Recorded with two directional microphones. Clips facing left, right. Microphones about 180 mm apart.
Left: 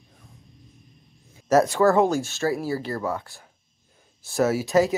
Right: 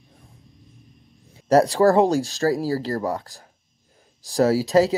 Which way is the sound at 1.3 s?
30° right (ahead or behind).